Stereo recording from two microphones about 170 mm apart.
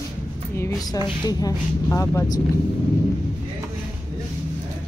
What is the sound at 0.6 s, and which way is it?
A woman's voice, 20° left (ahead or behind).